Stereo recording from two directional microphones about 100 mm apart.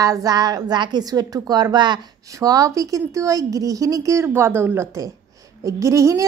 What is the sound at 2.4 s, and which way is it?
Speech, 35° right (ahead or behind).